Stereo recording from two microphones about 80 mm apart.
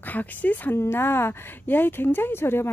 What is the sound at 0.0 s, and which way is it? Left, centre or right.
Speech, left.